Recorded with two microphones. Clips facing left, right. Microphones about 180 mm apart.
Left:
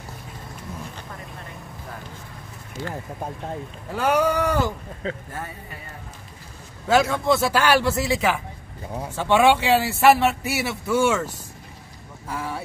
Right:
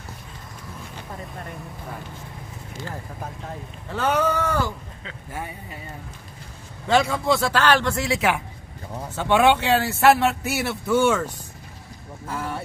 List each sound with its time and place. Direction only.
3.9 s speech: 10° left (ahead or behind)
5.0 s speech: 40° left (ahead or behind)
6.9 s speech: centre (ahead or behind)
8.9 s speech: 10° left (ahead or behind)
12.3 s speech: centre (ahead or behind)